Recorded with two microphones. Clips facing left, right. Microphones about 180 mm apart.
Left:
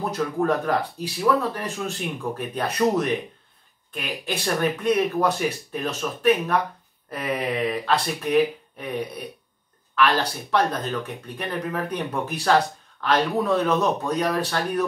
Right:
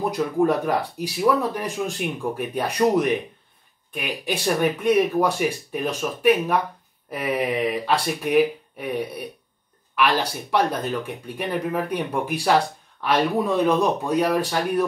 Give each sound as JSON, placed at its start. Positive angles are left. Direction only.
{"t": 0.1, "sound": "speech", "side_deg": -10}